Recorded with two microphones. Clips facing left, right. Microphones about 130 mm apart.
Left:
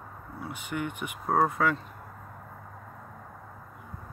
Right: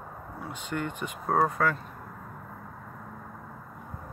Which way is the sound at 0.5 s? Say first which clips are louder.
Right 1 dB; 15° left (ahead or behind).